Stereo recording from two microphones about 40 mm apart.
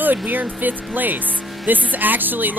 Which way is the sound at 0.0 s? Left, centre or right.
Right.